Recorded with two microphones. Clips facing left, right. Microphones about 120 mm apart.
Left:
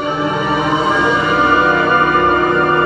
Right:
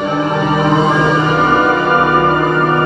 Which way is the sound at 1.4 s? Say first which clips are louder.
Right 1 dB; 35° right (ahead or behind).